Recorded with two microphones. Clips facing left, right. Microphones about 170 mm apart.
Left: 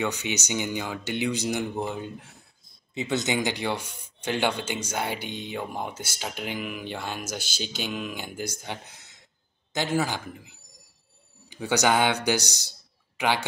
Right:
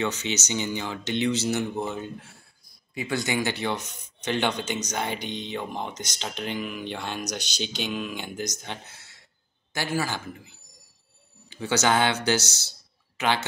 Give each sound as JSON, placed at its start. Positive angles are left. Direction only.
{"t": 0.0, "sound": "speech", "side_deg": 15}
{"t": 7.4, "sound": "speech", "side_deg": -65}
{"t": 7.7, "sound": "speech", "side_deg": 10}